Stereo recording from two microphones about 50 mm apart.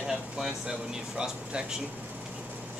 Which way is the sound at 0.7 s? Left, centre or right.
Centre.